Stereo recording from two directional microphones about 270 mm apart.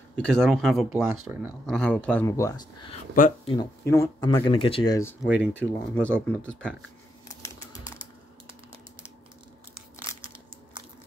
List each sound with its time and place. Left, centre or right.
0.1 s speech: centre
2.0 s speech: centre
3.2 s speech: left
3.5 s speech: centre